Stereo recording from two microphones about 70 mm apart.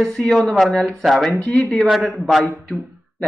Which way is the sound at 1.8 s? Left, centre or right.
Centre.